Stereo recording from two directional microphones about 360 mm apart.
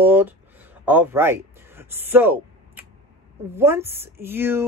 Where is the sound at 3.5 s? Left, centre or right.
Centre.